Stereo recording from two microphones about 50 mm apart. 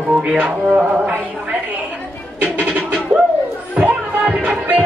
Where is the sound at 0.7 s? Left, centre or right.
Right.